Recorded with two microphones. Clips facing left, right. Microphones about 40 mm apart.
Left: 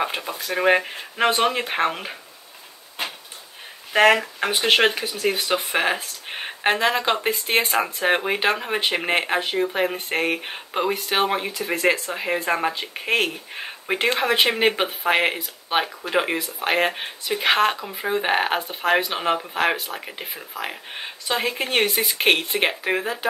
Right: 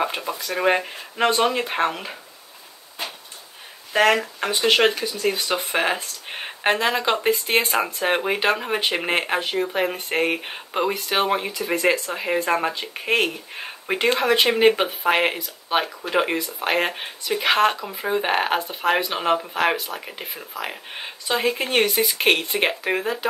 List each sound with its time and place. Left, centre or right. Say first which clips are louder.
0.0 s speech: right 1 dB; centre
3.9 s speech: left 2 dB; centre
5.6 s speech: even; centre